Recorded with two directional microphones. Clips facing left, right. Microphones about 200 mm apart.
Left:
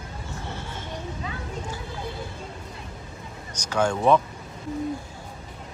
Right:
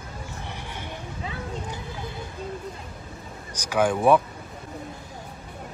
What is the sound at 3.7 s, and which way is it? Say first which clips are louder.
Speech: right 1 dB; 15° right (ahead or behind).